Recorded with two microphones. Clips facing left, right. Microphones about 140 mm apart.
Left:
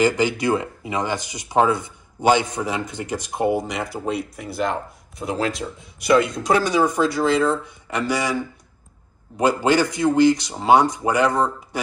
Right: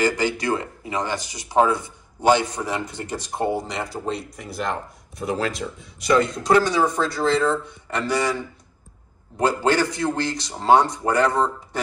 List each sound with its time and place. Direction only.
0.0 s speech: 20° left (ahead or behind)
9.4 s speech: 15° left (ahead or behind)